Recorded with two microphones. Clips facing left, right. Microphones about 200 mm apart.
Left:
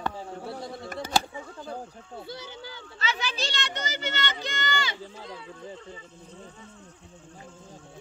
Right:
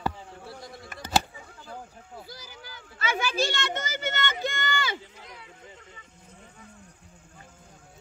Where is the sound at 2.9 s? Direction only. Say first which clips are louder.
Right 5 dB; 50° right (ahead or behind).